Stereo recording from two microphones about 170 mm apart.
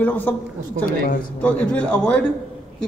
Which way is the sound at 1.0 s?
60° left (ahead or behind).